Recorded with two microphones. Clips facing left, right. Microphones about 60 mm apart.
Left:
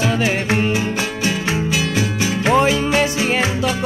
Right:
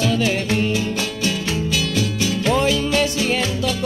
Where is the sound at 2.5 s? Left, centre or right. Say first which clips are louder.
Left 4 dB; left.